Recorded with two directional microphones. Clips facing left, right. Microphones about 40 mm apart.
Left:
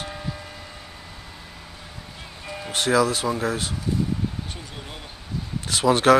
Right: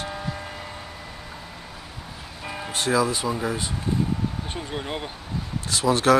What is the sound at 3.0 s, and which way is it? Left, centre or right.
Speech, left.